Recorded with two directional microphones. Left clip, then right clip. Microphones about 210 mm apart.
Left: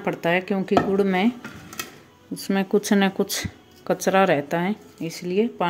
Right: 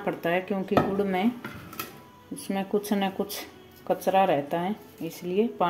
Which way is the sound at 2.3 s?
30° left (ahead or behind).